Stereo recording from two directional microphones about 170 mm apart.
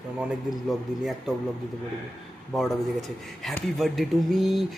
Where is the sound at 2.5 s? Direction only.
Centre (ahead or behind).